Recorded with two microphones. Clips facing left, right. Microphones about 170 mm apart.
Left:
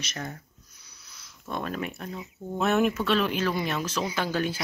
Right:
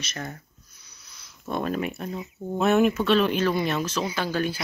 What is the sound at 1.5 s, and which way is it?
Speech, 10° right (ahead or behind).